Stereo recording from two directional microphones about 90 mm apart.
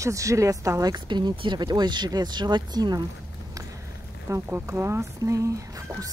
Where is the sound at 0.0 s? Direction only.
35° right (ahead or behind).